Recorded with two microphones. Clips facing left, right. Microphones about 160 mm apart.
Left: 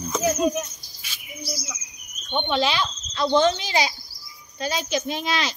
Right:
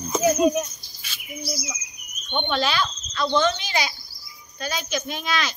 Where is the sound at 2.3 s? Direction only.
20° left (ahead or behind).